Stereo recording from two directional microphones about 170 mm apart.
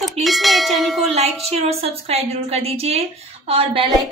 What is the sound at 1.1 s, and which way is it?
Speech, 35° right (ahead or behind).